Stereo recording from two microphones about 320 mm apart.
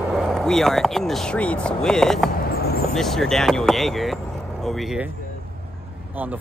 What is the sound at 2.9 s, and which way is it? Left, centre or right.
Speech, centre.